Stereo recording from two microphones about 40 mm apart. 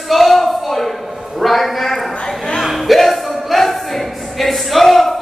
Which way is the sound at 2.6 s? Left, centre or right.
Centre.